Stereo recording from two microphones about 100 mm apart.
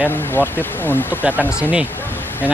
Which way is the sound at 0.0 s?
20° left (ahead or behind).